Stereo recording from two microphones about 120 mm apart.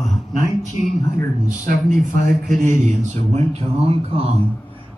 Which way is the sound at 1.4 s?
90° right.